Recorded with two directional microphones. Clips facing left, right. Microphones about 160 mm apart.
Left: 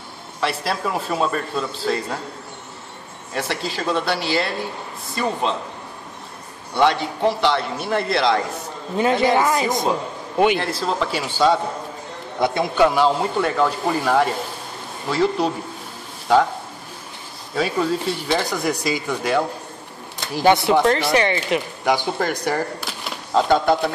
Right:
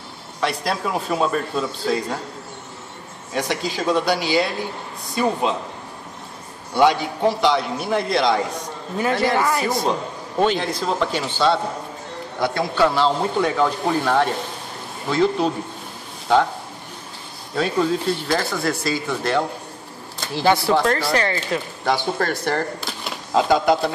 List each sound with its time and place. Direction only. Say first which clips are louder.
0.4 s speech: even; centre (ahead or behind)
3.3 s speech: right 2 dB; centre (ahead or behind)
6.7 s speech: right 1 dB; centre (ahead or behind)
8.9 s a woman's voice: left 3 dB; 20° left (ahead or behind)
13.4 s speech: right 2 dB; centre (ahead or behind)
17.6 s speech: right 1 dB; 5° left (ahead or behind)
18.4 s speech: left 1 dB; 15° left (ahead or behind)
23.3 s speech: even; 5° right (ahead or behind)